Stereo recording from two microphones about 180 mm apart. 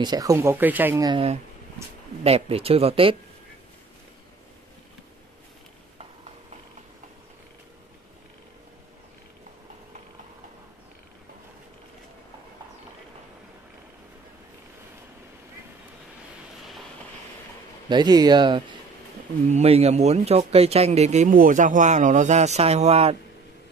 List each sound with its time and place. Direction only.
0.0 s speech: 20° right (ahead or behind)
1.0 s speech: 30° right (ahead or behind)
17.8 s speech: 25° right (ahead or behind)